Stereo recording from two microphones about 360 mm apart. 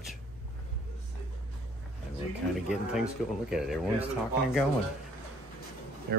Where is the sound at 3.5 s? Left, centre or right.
Centre.